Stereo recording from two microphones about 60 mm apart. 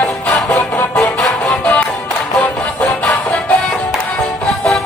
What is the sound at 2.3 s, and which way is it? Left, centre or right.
Music, centre.